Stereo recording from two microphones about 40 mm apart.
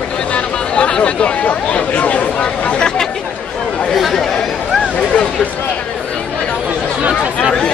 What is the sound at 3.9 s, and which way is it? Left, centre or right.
Chatter, centre.